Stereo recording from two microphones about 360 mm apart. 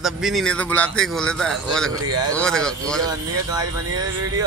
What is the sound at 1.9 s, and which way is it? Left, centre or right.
Speech, right.